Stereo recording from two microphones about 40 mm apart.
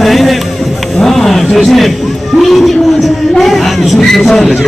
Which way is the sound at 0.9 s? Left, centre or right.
Centre.